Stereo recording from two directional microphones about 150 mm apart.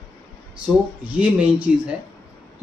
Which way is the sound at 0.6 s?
10° right (ahead or behind).